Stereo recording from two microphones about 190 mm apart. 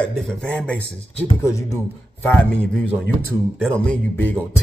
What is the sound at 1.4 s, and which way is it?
A man's voice, 15° left (ahead or behind).